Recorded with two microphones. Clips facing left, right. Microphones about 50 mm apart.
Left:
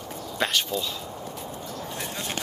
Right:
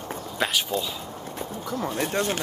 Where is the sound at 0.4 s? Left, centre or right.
Centre.